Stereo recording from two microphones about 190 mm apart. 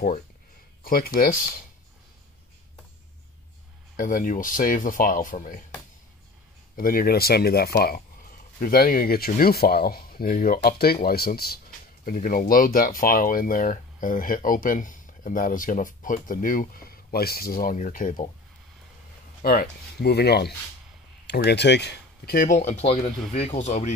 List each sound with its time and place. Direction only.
0.8 s speech: 50° left (ahead or behind)
3.9 s speech: 45° left (ahead or behind)
6.8 s speech: 50° left (ahead or behind)
19.4 s speech: 55° left (ahead or behind); by 23.9 s 35° left (ahead or behind)